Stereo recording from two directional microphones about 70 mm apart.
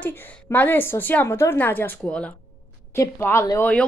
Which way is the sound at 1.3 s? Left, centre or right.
Left.